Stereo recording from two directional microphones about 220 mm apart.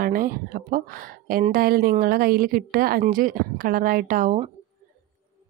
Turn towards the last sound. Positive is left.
turn(degrees=-35)  # may be behind; listen again after turning